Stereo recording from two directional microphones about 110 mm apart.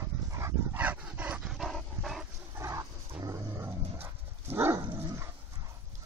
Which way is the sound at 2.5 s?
30° right (ahead or behind).